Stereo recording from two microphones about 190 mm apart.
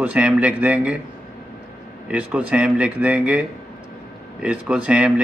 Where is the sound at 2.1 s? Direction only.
5° right (ahead or behind).